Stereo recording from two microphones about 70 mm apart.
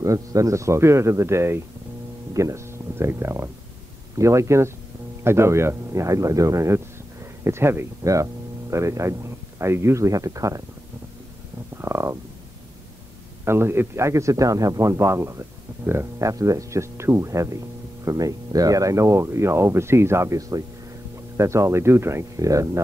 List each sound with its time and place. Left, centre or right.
0.0 s speech: right
7.4 s speech: right
11.8 s a sound: right
13.5 s speech: right
18.0 s speech: right
20.3 s speech: right
21.4 s speech: right
22.4 s speech: right